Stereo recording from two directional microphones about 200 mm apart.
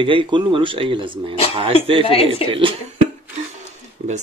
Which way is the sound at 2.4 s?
30° left (ahead or behind).